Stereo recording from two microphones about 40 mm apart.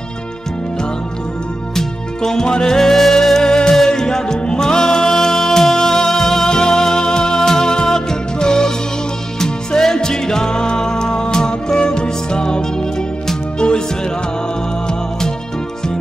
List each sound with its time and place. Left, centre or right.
1.8 s music: centre
14.9 s music: centre